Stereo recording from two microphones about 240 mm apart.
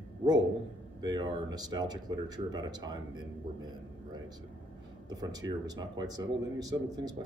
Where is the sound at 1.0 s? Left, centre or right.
Centre.